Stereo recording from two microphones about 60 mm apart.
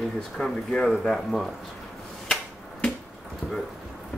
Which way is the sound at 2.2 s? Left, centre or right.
Centre.